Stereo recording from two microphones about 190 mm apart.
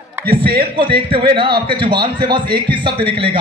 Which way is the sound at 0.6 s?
25° right (ahead or behind).